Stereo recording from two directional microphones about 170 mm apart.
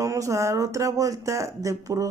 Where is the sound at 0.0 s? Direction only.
20° right (ahead or behind).